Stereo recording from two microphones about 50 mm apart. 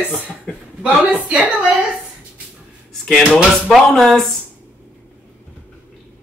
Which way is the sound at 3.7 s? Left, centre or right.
Centre.